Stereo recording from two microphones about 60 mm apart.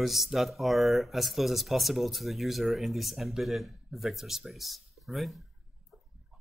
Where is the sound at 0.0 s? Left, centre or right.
Centre.